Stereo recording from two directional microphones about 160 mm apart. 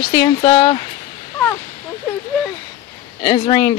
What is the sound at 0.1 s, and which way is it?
Speech, 30° left (ahead or behind).